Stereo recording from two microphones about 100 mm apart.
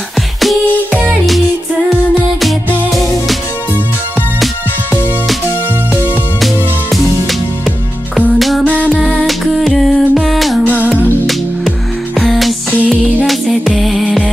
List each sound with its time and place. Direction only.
2.4 s music: centre (ahead or behind)
6.4 s music: centre (ahead or behind)
8.4 s music: centre (ahead or behind)
10.8 s music: 15° right (ahead or behind)
12.2 s music: centre (ahead or behind)